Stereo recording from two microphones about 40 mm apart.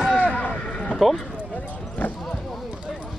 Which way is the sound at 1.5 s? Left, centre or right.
Left.